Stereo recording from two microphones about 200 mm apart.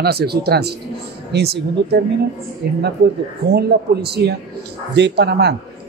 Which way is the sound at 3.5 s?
55° right (ahead or behind).